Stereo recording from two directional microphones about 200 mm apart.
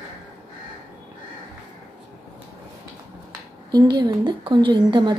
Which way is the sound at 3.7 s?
20° right (ahead or behind).